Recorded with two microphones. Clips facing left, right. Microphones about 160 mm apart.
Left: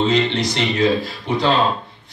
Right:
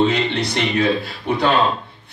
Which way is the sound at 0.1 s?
60° right (ahead or behind).